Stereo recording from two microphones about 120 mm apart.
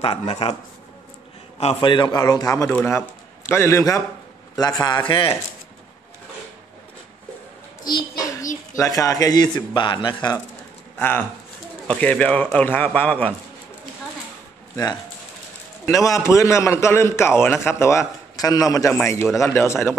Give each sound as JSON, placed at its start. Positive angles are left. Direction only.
{"t": 0.0, "sound": "speech", "side_deg": 50}
{"t": 1.8, "sound": "speech", "side_deg": 40}
{"t": 2.7, "sound": "a man's voice", "side_deg": 15}
{"t": 7.8, "sound": "child singing", "side_deg": 35}
{"t": 8.7, "sound": "speech", "side_deg": 25}
{"t": 11.0, "sound": "speech", "side_deg": 15}
{"t": 15.9, "sound": "a man's voice", "side_deg": 25}